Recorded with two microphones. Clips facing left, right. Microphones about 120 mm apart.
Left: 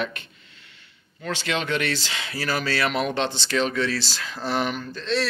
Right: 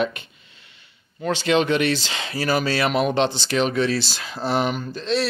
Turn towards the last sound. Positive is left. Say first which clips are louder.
# right 3 dB
turn(degrees=-15)  # may be behind; listen again after turning